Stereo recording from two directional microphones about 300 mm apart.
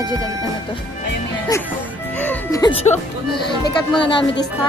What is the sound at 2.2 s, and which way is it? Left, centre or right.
Speech, centre.